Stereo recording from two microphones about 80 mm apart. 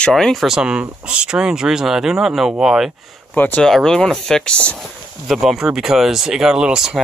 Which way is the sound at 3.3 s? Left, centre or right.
Left.